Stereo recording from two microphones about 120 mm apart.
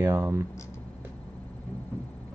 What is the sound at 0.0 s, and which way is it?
Speech, 20° right (ahead or behind).